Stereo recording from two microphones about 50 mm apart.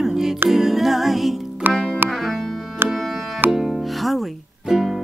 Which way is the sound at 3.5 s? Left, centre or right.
Centre.